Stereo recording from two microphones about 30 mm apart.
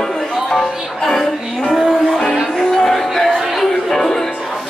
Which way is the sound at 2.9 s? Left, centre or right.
Centre.